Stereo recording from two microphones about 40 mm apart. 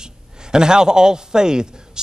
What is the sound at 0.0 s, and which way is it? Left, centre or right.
A man's voice, centre.